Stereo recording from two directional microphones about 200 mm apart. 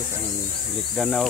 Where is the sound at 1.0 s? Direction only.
Centre (ahead or behind).